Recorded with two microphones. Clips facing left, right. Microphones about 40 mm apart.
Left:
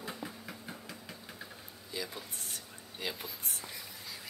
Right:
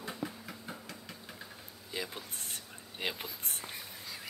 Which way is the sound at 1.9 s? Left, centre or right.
Right.